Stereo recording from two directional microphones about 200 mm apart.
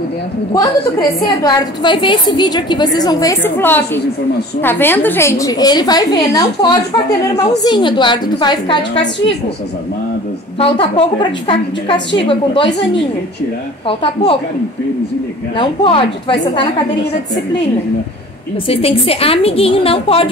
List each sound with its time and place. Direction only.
1.4 s a woman's voice: 20° left (ahead or behind)
10.6 s a woman's voice: 25° left (ahead or behind)
13.8 s a woman's voice: 25° left (ahead or behind)
15.5 s a woman's voice: 25° left (ahead or behind)
18.7 s a woman's voice: 30° left (ahead or behind)